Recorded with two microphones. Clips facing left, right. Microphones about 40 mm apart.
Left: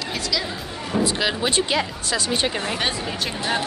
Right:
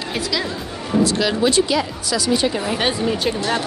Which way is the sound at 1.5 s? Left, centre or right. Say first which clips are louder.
Right 4 dB; left.